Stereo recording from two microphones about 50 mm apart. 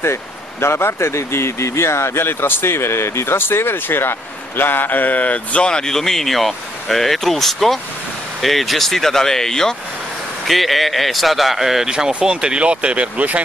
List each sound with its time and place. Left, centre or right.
0.0 s speech: left; by 9.8 s centre
10.4 s speech: centre; by 13.4 s right